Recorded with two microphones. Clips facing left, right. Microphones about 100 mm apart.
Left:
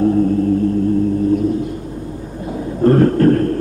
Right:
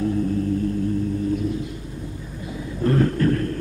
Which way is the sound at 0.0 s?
50° left (ahead or behind).